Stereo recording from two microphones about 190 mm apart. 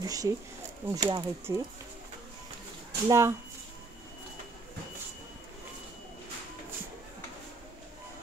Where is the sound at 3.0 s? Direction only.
15° right (ahead or behind).